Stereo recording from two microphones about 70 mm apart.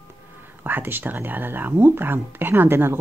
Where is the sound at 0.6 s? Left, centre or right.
Right.